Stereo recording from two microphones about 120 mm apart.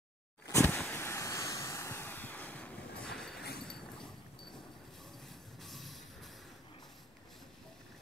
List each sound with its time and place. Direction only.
0.5 s vehicle: 20° left (ahead or behind); by 4.1 s 5° left (ahead or behind)
5.6 s music: centre (ahead or behind)